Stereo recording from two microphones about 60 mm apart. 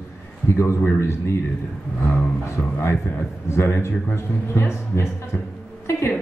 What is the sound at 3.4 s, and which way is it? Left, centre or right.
A man's voice, left.